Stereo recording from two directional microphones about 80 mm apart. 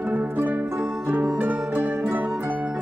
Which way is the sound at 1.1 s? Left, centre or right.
Centre.